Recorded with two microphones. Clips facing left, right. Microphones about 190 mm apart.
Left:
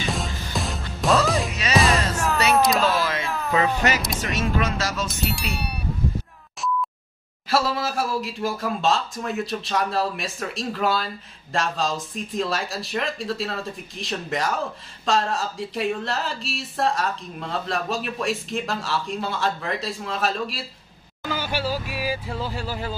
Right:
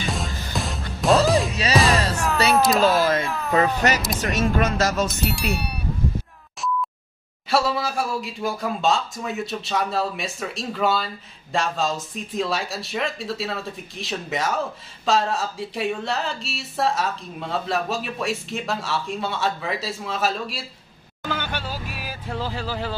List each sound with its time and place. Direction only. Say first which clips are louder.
0.0 s music: even; centre (ahead or behind)
1.5 s music: right 3 dB; 30° right (ahead or behind)
1.8 s music: even; centre (ahead or behind)
2.5 s a sound: right 3 dB; centre (ahead or behind)
4.6 s speech: right 4 dB; 50° right (ahead or behind)
5.0 s speech: right 3 dB; centre (ahead or behind)
7.4 s speech: right 1 dB; centre (ahead or behind)